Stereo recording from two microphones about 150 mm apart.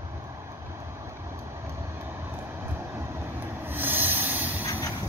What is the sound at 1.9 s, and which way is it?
Train, 15° right (ahead or behind).